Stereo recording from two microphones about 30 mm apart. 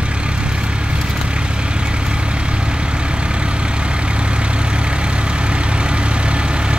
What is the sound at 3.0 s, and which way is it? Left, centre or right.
Vehicle, right.